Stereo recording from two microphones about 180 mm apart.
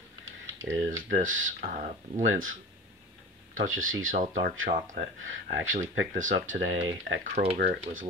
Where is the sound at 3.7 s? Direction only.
90° right.